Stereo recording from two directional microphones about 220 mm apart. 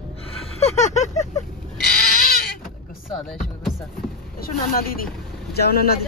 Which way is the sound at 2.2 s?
40° left (ahead or behind).